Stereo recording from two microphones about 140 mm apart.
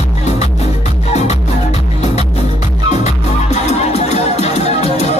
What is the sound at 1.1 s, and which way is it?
Music, 50° left (ahead or behind).